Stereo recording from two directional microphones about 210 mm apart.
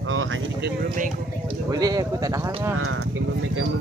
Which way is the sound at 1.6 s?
15° right (ahead or behind).